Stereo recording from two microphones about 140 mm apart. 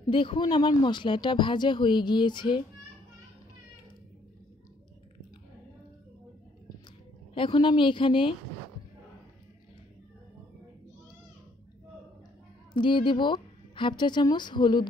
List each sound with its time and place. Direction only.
0.1 s speech: 35° left (ahead or behind)
7.3 s speech: 35° left (ahead or behind)
12.7 s speech: 35° left (ahead or behind)